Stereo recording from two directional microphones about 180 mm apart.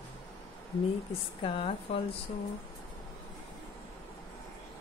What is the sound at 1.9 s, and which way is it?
Speech, 35° left (ahead or behind).